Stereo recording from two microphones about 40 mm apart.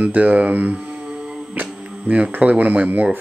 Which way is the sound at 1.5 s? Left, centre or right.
Right.